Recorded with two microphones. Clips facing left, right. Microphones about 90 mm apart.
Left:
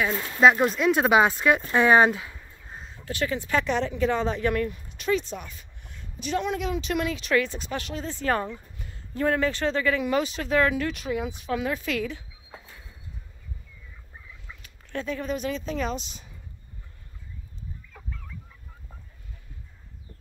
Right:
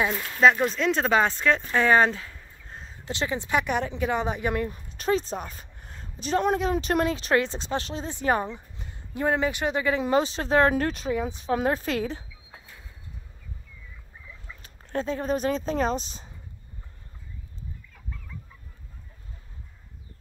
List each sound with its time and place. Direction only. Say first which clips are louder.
0.4 s speech: left 1 dB; 5° left (ahead or behind)
3.1 s a woman's voice: even; 25° right (ahead or behind)
4.6 s a woman's voice: right 1 dB; 35° right (ahead or behind); by 10.0 s 20° right (ahead or behind)
10.0 s speech: right 2 dB; 30° right (ahead or behind)
14.6 s speech: right 4 dB; 35° right (ahead or behind)